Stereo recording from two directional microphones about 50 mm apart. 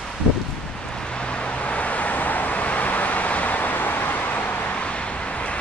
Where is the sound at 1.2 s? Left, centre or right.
Left.